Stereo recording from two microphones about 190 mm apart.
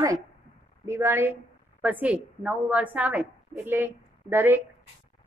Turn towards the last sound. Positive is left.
turn(degrees=-10)  # may be behind; listen again after turning